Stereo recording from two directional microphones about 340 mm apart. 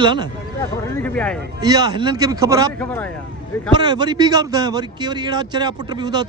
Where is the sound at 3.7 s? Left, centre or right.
Centre.